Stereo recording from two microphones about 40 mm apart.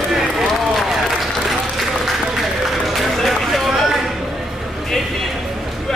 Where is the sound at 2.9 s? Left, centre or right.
Centre.